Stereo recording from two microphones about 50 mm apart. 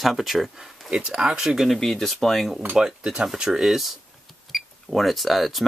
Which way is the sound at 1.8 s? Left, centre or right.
Centre.